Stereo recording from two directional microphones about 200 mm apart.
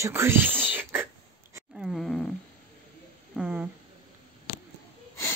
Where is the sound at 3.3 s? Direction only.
5° right (ahead or behind).